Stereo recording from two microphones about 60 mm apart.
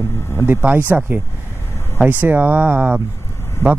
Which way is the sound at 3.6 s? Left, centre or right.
Left.